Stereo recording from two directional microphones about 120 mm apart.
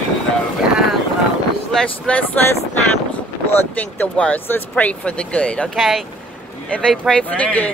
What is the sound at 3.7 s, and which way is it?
Speech, 15° left (ahead or behind).